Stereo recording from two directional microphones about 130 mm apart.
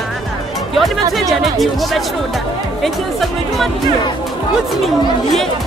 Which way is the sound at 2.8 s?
Centre (ahead or behind).